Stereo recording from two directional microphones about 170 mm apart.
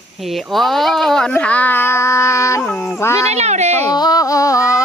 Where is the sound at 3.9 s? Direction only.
20° left (ahead or behind).